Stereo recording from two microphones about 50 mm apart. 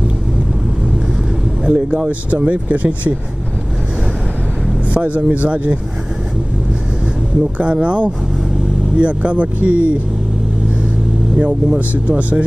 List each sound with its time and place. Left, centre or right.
1.6 s speech: right
4.9 s speech: right
7.5 s speech: right
11.3 s speech: right